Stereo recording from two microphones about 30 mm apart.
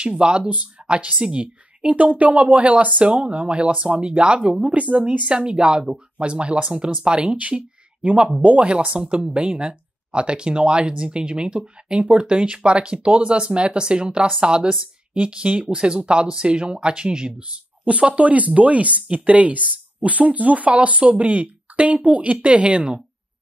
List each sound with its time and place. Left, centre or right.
0.0 s a woman's voice: right
3.0 s speech: right
4.6 s speech: right
5.2 s speech: right
8.0 s speech: right
8.6 s speech: right
17.4 s speech: right